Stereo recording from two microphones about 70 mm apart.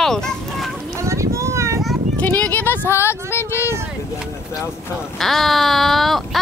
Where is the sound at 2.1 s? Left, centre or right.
Left.